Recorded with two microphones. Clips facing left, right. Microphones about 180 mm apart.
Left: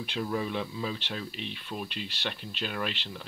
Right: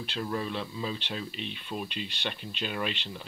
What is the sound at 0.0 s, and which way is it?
Speech, 10° left (ahead or behind).